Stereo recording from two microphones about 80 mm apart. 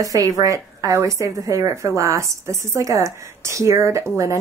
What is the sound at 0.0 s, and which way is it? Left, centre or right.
Speech, right.